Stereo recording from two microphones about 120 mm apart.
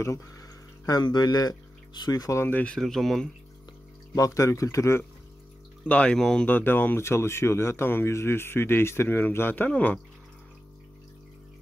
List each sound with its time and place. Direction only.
0.0 s speech: 25° left (ahead or behind); by 3.3 s centre (ahead or behind)
4.1 s speech: 25° left (ahead or behind)
5.9 s speech: 10° left (ahead or behind)